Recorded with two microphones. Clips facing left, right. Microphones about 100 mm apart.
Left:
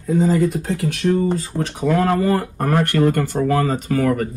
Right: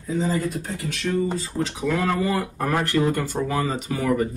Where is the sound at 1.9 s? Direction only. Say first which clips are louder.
Left 6 dB; 40° left (ahead or behind).